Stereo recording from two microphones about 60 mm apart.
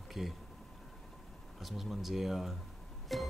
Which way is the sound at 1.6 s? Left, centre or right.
Centre.